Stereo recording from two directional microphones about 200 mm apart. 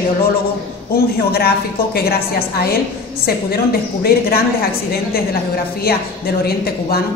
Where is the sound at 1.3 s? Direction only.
50° left (ahead or behind).